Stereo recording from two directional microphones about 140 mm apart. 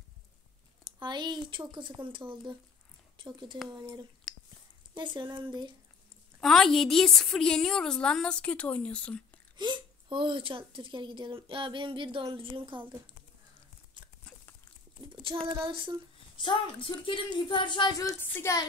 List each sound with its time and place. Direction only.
0.9 s a woman's voice: 30° right (ahead or behind)
6.4 s a woman's voice: centre (ahead or behind)
9.6 s a woman's voice: 35° right (ahead or behind)
14.0 s a sound: 35° right (ahead or behind)
15.4 s a woman's voice: 35° right (ahead or behind)
16.3 s speech: 35° left (ahead or behind); by 18.7 s 20° left (ahead or behind)